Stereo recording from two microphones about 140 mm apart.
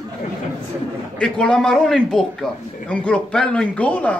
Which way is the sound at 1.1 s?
5° left (ahead or behind).